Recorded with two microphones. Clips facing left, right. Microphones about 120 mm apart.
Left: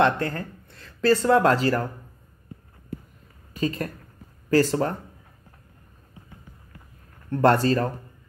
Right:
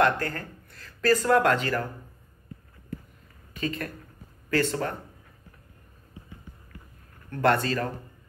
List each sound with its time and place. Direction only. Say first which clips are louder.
0.0 s speech: left 2 dB; 30° left (ahead or behind)
3.5 s speech: left 4 dB; 35° left (ahead or behind)
7.2 s speech: left 5 dB; 35° left (ahead or behind)